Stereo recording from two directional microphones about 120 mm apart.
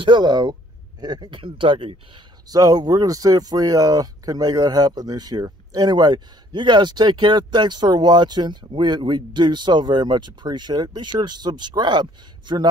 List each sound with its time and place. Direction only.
0.0 s speech: 40° right (ahead or behind)